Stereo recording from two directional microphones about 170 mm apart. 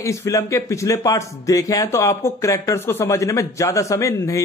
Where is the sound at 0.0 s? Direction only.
15° left (ahead or behind).